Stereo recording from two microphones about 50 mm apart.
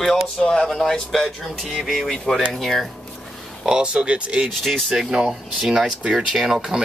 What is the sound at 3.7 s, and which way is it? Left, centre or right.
Speech, centre.